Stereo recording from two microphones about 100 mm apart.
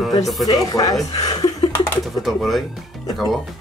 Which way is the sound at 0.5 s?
40° left (ahead or behind).